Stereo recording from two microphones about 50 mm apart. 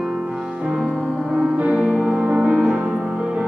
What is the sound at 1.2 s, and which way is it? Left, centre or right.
Music, centre.